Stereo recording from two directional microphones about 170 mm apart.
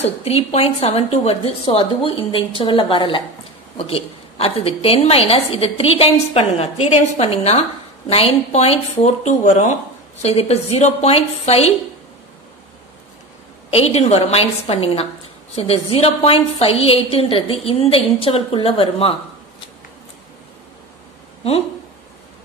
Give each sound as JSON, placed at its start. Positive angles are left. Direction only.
{"t": 0.0, "sound": "a woman's voice", "side_deg": 40}
{"t": 13.7, "sound": "a woman's voice", "side_deg": 35}